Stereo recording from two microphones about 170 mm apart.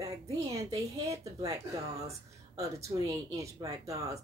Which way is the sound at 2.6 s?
20° right (ahead or behind).